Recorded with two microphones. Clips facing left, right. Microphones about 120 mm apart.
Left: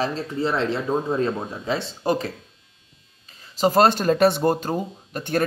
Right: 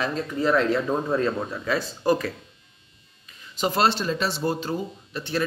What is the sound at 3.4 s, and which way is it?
Speech, 40° left (ahead or behind).